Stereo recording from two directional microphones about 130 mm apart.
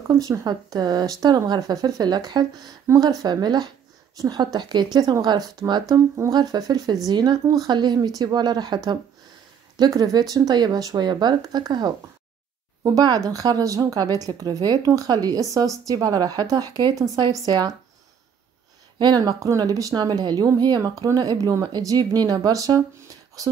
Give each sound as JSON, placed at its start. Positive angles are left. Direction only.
{"t": 0.2, "sound": "a woman's voice", "side_deg": -25}
{"t": 18.9, "sound": "speech", "side_deg": -35}